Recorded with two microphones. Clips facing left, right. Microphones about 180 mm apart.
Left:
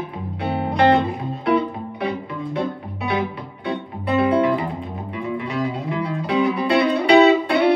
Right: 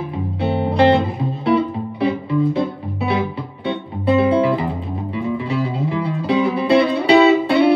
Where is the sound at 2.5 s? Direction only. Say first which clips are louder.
Right 3 dB; 30° right (ahead or behind).